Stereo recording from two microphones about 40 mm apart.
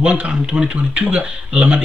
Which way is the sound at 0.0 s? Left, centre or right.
Right.